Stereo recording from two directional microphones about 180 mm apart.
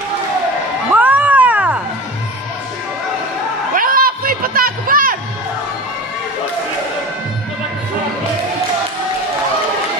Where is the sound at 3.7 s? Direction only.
50° right (ahead or behind).